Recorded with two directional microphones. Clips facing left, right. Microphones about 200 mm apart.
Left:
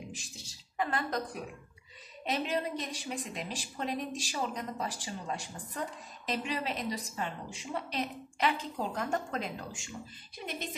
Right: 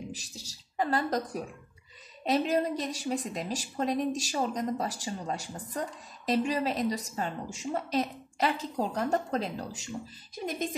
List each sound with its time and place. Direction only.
0.1 s a woman's voice: 40° right (ahead or behind)